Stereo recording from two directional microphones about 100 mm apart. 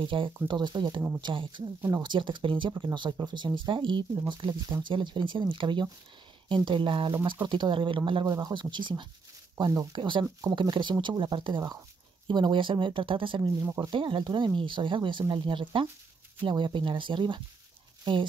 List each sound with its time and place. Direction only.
0.0 s speech: 55° right (ahead or behind)
13.6 s speech: 35° right (ahead or behind)
13.9 s speech: 55° right (ahead or behind)